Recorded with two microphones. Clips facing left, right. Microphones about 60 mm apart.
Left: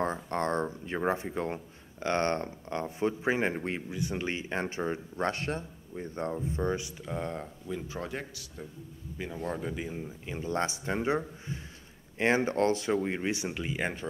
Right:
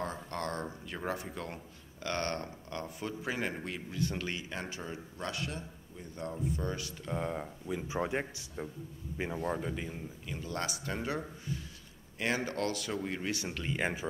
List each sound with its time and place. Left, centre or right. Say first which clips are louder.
0.0 s speech: left 7 dB; left
3.9 s speech: right 1 dB; centre
7.0 s speech: left 1 dB; centre
7.9 s speech: right 3 dB; right
9.5 s speech: left 1 dB; centre
10.2 s speech: left 6 dB; left
13.7 s speech: right 2 dB; centre